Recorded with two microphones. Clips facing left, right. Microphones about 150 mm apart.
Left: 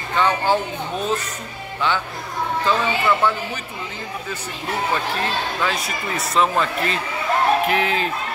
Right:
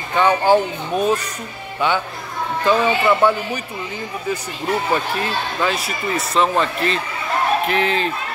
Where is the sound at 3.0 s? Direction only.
15° right (ahead or behind).